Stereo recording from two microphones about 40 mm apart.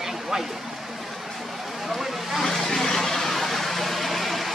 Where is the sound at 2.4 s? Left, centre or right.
Centre.